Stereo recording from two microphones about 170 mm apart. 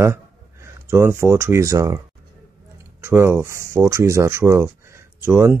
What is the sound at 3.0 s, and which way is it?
Speech, 15° right (ahead or behind).